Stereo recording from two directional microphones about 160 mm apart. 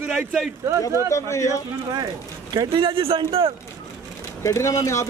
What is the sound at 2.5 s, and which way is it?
Speech, 30° right (ahead or behind).